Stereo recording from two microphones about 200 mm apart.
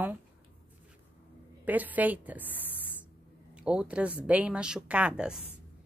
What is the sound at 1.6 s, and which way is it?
A woman's voice, 10° right (ahead or behind).